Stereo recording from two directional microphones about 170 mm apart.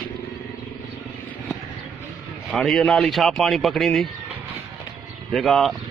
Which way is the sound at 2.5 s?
Centre (ahead or behind).